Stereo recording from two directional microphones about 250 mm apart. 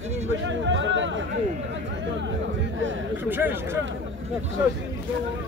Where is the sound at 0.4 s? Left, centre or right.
Right.